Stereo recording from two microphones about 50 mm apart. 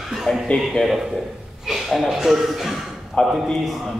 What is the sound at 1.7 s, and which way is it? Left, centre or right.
A man's voice, centre.